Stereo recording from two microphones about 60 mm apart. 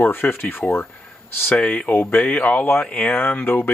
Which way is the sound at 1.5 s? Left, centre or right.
Left.